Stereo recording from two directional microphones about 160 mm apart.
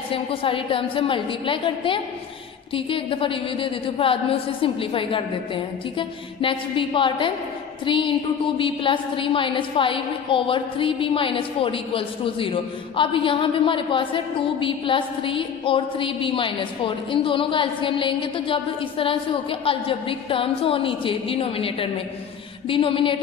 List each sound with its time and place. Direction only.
0.1 s a woman's voice: 35° left (ahead or behind)